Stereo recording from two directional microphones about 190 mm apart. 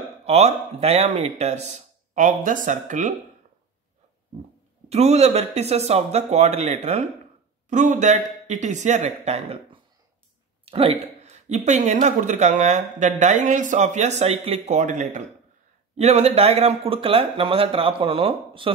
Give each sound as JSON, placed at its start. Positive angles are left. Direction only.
{"t": 0.2, "sound": "speech", "side_deg": -35}
{"t": 4.8, "sound": "speech", "side_deg": -35}